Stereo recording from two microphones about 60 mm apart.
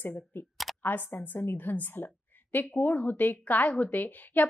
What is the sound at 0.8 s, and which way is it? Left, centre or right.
A woman's voice, left.